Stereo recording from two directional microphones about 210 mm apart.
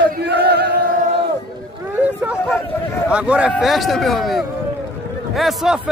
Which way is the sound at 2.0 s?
5° right (ahead or behind).